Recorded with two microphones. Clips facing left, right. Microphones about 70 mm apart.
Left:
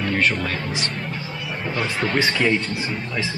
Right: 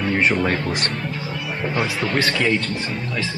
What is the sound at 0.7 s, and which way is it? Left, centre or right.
Speech, right.